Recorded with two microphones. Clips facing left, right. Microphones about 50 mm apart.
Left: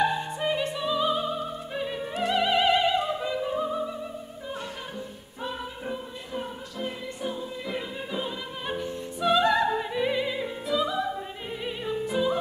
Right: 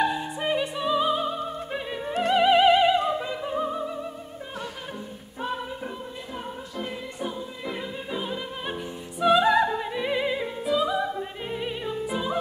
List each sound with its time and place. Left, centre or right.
0.0 s opera: centre
0.4 s music: centre
7.2 s music: centre
9.7 s opera: centre
10.1 s opera: centre
12.1 s music: centre